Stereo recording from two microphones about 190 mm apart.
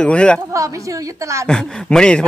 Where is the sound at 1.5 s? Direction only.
5° left (ahead or behind).